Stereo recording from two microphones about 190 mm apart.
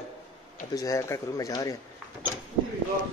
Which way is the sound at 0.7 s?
15° left (ahead or behind).